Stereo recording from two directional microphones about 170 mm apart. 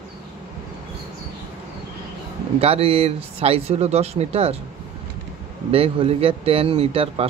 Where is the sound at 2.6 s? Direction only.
35° right (ahead or behind).